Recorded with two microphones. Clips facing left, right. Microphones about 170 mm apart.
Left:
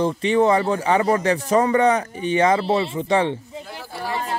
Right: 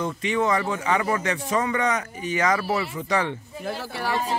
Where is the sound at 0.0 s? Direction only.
30° left (ahead or behind).